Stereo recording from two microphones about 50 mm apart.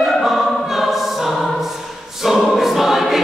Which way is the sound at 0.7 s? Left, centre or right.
Centre.